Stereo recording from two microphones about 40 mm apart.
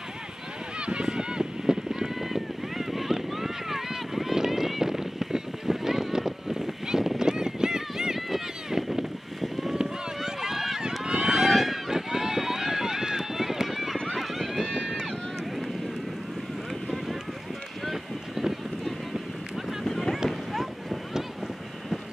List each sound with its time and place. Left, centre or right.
0.7 s a sound: right
2.2 s run: centre
9.8 s run: centre
11.1 s run: right
11.3 s run: centre
15.0 s vehicle: centre
17.8 s run: centre
19.9 s boat: centre